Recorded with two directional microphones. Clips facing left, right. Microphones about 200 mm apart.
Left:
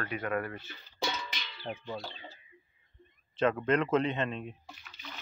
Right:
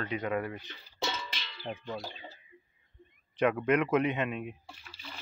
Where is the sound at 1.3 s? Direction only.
5° left (ahead or behind).